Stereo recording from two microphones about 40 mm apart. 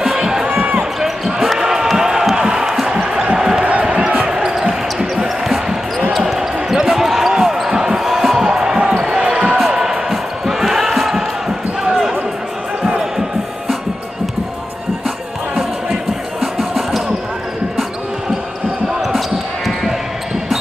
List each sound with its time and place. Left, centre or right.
0.0 s crowd: centre
0.5 s basketball bounce: right
1.0 s basketball bounce: centre
2.3 s music: centre
3.3 s a sound: centre
4.4 s basketball bounce: centre
7.8 s music: centre
9.2 s basketball bounce: right
9.7 s music: centre
15.0 s music: centre
18.9 s basketball bounce: centre